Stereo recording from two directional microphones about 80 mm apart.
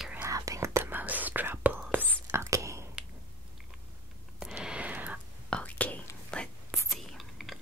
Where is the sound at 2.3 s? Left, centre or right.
Right.